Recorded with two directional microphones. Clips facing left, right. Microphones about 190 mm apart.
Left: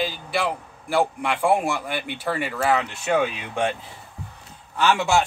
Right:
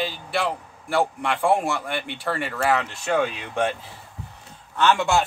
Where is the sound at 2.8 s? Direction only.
15° left (ahead or behind).